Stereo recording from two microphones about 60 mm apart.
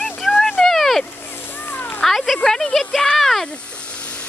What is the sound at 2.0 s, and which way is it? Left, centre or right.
Speech, centre.